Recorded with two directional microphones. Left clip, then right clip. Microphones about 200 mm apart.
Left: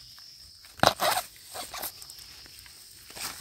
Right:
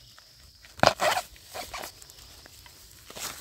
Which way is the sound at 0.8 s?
5° right (ahead or behind).